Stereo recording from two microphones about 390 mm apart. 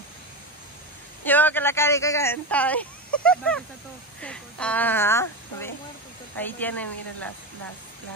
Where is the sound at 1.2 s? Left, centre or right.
Centre.